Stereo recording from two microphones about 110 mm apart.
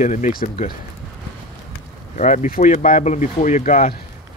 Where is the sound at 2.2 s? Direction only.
90° left.